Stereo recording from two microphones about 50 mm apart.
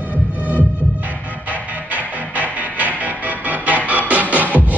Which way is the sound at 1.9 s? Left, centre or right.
Right.